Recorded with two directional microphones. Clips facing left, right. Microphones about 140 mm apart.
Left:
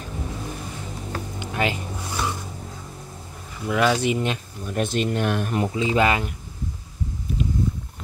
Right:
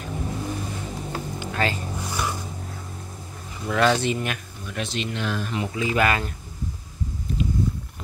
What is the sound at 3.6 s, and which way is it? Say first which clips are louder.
Speech: even; 10° left (ahead or behind).